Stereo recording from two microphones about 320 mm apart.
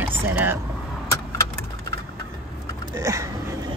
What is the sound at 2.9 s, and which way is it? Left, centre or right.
Speech, centre.